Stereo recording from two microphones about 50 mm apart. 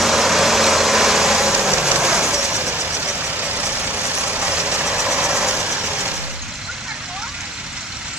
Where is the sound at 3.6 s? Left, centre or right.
Right.